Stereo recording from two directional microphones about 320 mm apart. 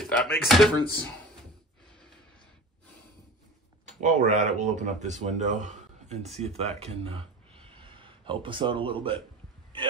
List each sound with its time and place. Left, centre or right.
0.0 s door: centre
0.5 s speech: centre
3.8 s speech: right